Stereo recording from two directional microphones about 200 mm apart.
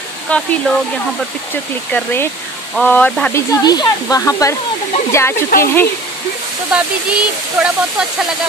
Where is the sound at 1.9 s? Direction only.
5° left (ahead or behind).